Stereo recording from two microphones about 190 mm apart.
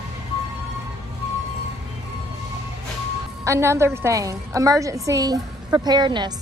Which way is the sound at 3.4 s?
15° right (ahead or behind).